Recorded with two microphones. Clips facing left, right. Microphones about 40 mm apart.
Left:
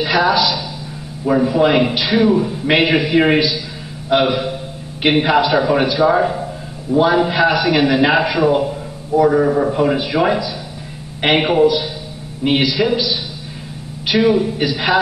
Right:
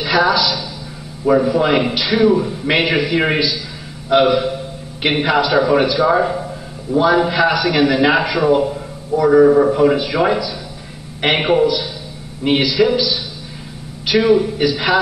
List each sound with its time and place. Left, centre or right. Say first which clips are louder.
0.0 s a man's voice: even; centre
7.0 s a man's voice: even; centre
11.6 s a man's voice: left 3 dB; centre
12.4 s a man's voice: right 1 dB; centre